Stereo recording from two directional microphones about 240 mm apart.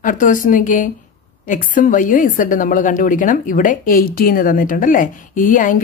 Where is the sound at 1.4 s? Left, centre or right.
Left.